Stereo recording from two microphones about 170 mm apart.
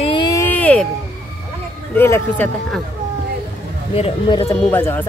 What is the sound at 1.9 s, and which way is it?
Speech, 10° left (ahead or behind).